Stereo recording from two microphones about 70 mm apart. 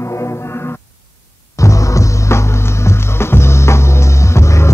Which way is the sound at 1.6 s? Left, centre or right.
Left.